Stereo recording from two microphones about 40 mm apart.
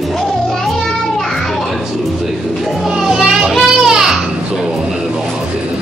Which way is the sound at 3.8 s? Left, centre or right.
Centre.